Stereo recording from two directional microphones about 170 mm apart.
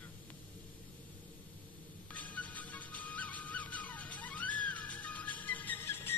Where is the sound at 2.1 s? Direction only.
10° left (ahead or behind).